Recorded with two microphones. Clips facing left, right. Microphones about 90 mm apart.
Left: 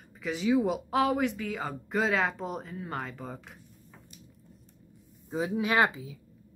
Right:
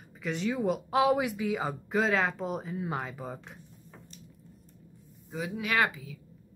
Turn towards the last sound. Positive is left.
turn(degrees=25)  # may be behind; listen again after turning